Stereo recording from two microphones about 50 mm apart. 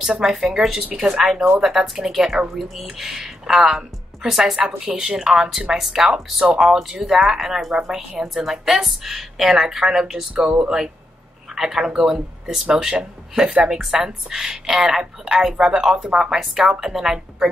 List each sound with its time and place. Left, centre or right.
0.2 s speech: centre
10.3 s speech: right